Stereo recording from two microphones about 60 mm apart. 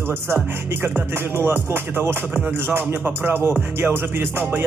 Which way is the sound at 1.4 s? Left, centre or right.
Right.